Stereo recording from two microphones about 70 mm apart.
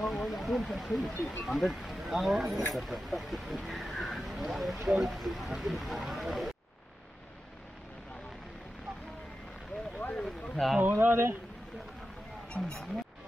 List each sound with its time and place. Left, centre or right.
0.0 s speech: centre
10.2 s a sound: centre
10.8 s speech: right
12.4 s speech: centre